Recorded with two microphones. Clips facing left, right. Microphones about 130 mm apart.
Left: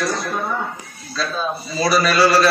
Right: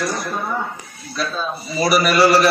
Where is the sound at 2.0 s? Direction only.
25° right (ahead or behind).